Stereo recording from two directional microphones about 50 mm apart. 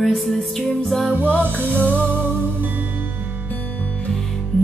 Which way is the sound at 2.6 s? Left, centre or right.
Right.